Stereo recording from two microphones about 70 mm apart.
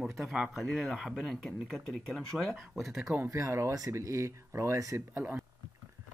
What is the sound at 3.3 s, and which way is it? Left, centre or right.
Speech, right.